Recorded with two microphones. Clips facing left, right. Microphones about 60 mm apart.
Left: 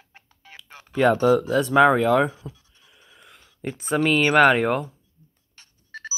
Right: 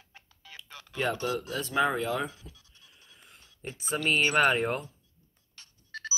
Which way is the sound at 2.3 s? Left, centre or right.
Left.